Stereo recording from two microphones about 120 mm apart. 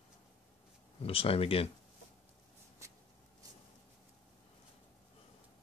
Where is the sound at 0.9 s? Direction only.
50° left (ahead or behind).